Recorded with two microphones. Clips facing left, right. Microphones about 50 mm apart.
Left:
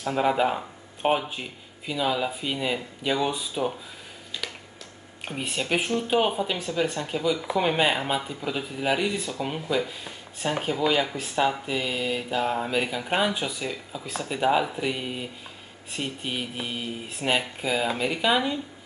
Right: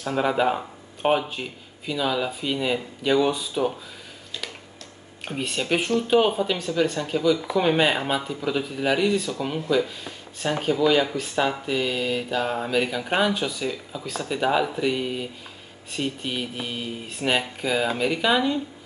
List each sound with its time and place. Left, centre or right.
0.0 s speech: centre
5.4 s speech: centre